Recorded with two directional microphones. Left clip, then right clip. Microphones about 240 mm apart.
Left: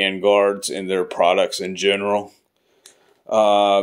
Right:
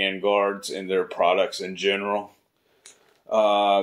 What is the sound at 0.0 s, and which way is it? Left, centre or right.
Speech, left.